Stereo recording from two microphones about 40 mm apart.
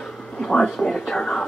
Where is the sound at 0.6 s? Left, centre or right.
Centre.